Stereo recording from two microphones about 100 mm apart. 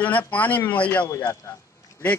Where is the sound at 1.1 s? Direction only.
30° left (ahead or behind).